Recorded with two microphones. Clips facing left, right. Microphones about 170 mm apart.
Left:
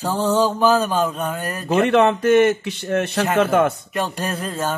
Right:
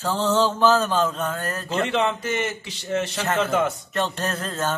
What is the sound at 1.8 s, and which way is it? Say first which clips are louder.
A man's voice: left 9 dB; 60° left (ahead or behind).